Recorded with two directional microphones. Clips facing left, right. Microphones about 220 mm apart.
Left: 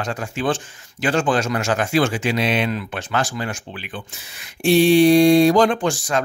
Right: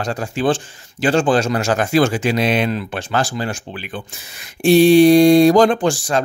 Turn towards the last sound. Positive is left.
turn(degrees=-35)  # may be behind; listen again after turning